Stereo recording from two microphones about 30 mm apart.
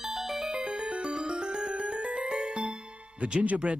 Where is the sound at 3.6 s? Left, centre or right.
Right.